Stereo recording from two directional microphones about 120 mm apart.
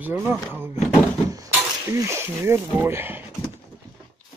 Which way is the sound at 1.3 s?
30° right (ahead or behind).